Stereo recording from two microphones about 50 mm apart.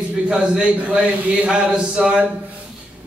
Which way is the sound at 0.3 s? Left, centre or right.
Centre.